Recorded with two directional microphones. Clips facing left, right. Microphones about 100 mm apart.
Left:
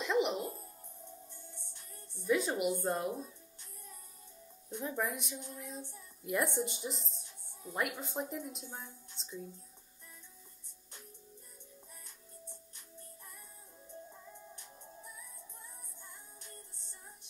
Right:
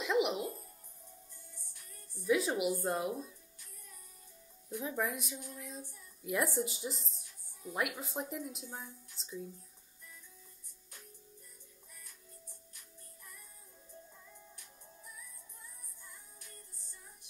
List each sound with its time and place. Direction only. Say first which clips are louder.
0.0 s music: even; 5° right (ahead or behind)
0.4 s music: right 1 dB; 30° left (ahead or behind)
2.2 s a woman's voice: even; 5° right (ahead or behind)
4.8 s a woman's voice: even; centre (ahead or behind)
14.1 s music: left 5 dB; 25° left (ahead or behind)
16.0 s music: even; 25° left (ahead or behind)